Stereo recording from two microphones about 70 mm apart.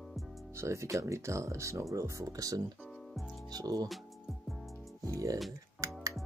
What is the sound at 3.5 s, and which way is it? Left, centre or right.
Speech, right.